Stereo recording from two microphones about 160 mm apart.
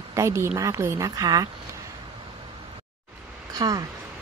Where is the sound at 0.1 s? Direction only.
15° right (ahead or behind).